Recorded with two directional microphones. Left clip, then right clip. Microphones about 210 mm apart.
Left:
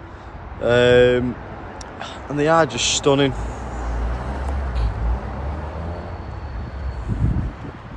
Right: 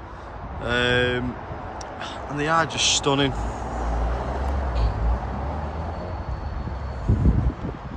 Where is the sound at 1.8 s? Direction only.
10° right (ahead or behind).